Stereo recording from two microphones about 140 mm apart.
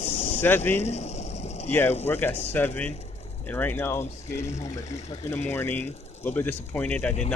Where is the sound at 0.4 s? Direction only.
15° left (ahead or behind).